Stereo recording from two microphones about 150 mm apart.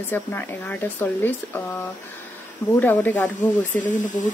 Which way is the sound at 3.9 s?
60° left (ahead or behind).